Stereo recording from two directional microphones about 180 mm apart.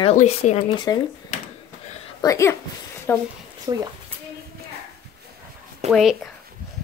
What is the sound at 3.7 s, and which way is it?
Speech, 25° right (ahead or behind).